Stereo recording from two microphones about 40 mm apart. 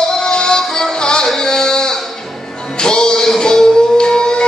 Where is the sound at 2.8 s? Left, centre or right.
Centre.